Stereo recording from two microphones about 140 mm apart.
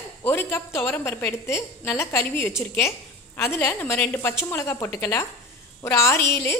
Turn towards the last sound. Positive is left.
turn(degrees=20)  # may be behind; listen again after turning